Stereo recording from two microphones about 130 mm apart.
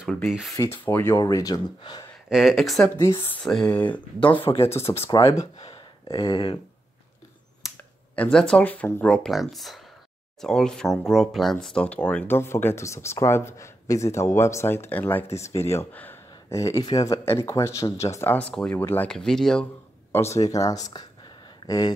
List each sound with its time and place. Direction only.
0.1 s speech: centre (ahead or behind)
0.6 s speech: 15° left (ahead or behind)
1.1 s speech: 25° left (ahead or behind)
2.2 s speech: 5° right (ahead or behind)
4.4 s speech: 40° left (ahead or behind)
8.2 s speech: 5° left (ahead or behind)
19.0 s speech: 5° left (ahead or behind)
20.1 s a sound: 20° left (ahead or behind)
20.4 s speech: 25° left (ahead or behind)